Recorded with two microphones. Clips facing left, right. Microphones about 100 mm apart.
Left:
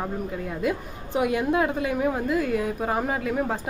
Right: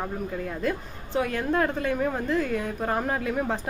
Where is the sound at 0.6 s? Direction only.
15° left (ahead or behind).